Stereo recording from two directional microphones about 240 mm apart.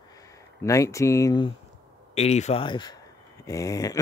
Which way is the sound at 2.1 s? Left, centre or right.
Left.